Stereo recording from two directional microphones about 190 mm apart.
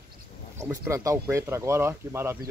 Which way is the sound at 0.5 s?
15° right (ahead or behind).